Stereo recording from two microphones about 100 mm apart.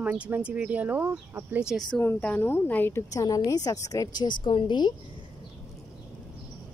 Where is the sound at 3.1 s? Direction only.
35° left (ahead or behind).